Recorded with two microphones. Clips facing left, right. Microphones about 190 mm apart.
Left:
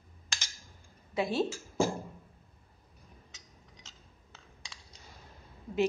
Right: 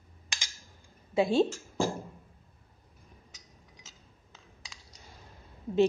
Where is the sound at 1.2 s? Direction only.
25° right (ahead or behind).